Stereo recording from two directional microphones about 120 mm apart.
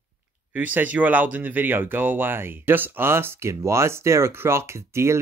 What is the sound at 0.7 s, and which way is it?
Speech, 15° right (ahead or behind).